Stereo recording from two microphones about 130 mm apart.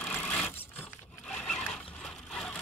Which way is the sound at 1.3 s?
5° left (ahead or behind).